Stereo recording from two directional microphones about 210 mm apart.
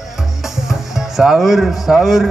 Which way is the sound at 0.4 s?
Centre (ahead or behind).